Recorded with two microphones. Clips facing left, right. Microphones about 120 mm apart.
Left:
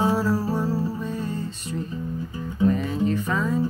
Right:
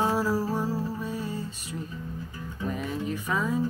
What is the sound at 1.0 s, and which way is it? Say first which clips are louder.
Music: left 4 dB; 10° right (ahead or behind).